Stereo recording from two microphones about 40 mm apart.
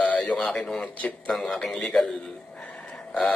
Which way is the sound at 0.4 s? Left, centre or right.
Centre.